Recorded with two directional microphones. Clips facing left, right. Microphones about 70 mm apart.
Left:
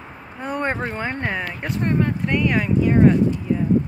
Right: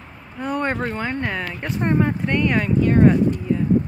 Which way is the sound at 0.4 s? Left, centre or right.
Left.